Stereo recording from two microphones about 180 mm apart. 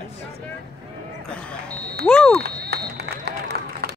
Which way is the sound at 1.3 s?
5° left (ahead or behind).